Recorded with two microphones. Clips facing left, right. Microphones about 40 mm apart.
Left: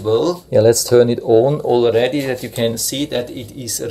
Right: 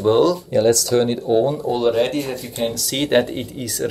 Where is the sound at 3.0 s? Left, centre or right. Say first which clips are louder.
Right 9 dB; right.